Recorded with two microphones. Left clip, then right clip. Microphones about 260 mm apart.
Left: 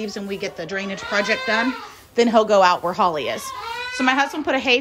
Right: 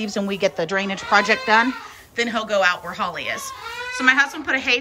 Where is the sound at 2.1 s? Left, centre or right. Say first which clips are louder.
Left 6 dB; centre.